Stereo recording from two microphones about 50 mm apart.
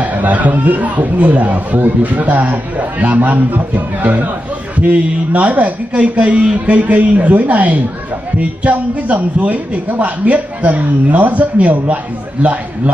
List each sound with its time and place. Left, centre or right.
0.0 s a man's voice: right